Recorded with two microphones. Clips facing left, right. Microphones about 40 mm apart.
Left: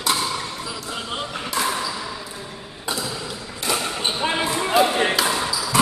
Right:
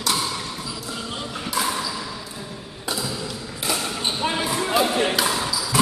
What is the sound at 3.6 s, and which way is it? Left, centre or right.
Basketball bounce, centre.